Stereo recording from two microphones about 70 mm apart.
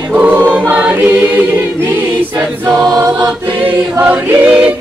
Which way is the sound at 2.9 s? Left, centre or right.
Right.